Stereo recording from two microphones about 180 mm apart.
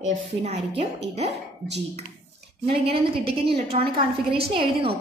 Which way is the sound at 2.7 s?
30° right (ahead or behind).